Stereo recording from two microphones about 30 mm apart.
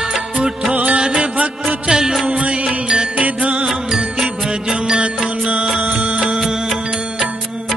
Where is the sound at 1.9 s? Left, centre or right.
Centre.